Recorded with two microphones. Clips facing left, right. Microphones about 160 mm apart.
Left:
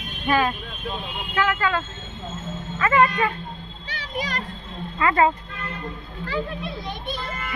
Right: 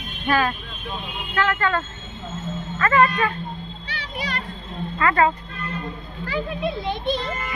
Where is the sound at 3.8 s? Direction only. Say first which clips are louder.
Left 2 dB; 45° left (ahead or behind).